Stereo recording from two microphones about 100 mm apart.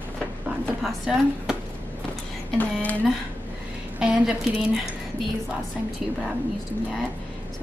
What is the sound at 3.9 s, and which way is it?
Speech, 10° right (ahead or behind).